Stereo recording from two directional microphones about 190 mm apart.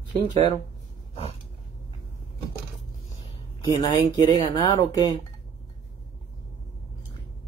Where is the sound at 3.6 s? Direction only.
25° left (ahead or behind).